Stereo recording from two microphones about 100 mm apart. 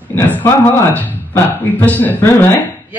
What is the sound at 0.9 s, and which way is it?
A man's voice, 15° left (ahead or behind).